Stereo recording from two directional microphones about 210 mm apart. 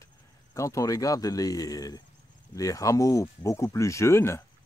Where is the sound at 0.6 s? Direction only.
15° left (ahead or behind).